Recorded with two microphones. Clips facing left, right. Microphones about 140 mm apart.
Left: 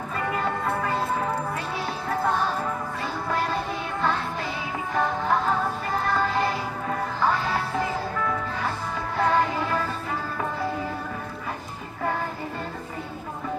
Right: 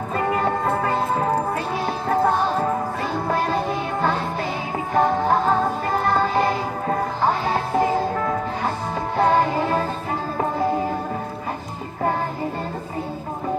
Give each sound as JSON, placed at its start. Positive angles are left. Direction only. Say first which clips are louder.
{"t": 0.1, "sound": "music", "louder": "right 6 dB", "side_deg": -35}